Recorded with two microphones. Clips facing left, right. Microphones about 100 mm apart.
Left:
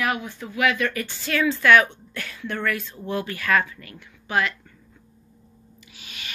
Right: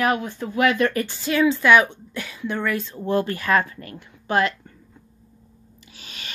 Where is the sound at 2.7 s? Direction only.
35° right (ahead or behind).